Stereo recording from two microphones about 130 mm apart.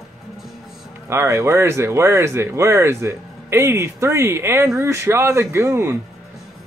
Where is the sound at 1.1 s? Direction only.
20° right (ahead or behind).